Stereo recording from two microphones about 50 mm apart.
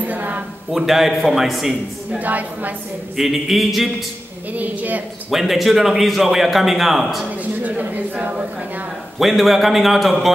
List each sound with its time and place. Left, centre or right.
0.0 s a sound: right
0.7 s a man's voice: centre
2.1 s speech: right
3.2 s a man's voice: centre
4.5 s speech: right
5.3 s a man's voice: centre
7.6 s speech: right
9.2 s a man's voice: centre